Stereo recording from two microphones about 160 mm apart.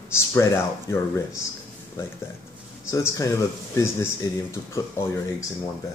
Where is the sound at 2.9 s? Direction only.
20° left (ahead or behind).